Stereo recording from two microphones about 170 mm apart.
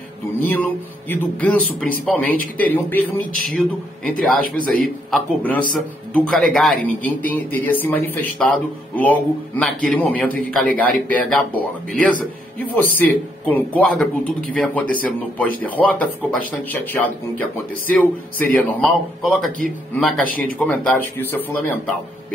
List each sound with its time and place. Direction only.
0.4 s a man's voice: 10° left (ahead or behind)
4.4 s a man's voice: 55° right (ahead or behind)
4.8 s a man's voice: 5° left (ahead or behind)